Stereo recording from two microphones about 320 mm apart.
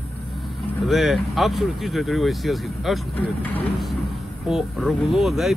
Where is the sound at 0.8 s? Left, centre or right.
Centre.